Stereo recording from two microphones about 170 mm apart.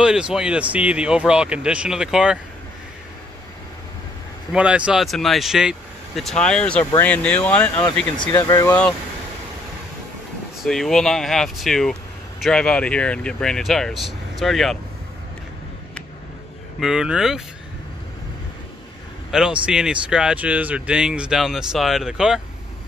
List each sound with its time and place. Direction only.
0.0 s speech: 5° right (ahead or behind)
4.5 s speech: 5° right (ahead or behind); by 8.7 s 20° left (ahead or behind)
10.6 s speech: centre (ahead or behind)
16.8 s speech: 5° right (ahead or behind)
19.3 s speech: 5° right (ahead or behind)